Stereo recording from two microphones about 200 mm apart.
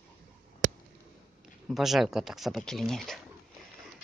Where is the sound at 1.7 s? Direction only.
Centre (ahead or behind).